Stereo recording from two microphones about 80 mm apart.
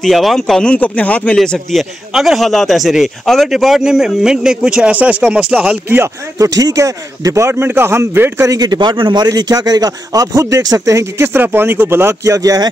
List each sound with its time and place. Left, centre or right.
0.0 s a man's voice: centre
0.7 s a man's voice: centre
6.3 s a man's voice: right
8.5 s a man's voice: right
12.3 s a man's voice: right